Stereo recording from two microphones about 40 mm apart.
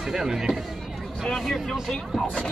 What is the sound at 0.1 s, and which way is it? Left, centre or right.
Speech, centre.